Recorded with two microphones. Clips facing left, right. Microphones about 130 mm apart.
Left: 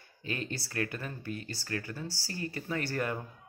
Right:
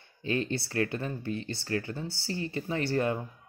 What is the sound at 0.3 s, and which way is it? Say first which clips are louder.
Speech: right 7 dB; 30° right (ahead or behind).